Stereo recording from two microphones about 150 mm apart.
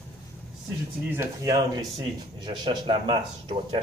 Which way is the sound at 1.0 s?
15° right (ahead or behind).